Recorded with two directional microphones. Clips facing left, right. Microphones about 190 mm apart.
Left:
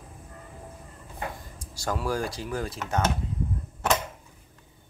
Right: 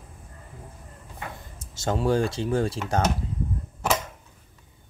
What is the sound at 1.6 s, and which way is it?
Speech, 25° right (ahead or behind).